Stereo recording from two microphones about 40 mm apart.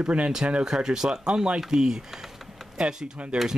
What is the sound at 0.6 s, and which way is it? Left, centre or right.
Speech, centre.